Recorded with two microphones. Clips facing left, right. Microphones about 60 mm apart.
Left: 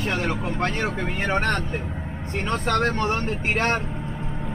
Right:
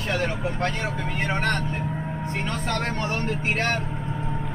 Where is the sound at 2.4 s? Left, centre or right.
Left.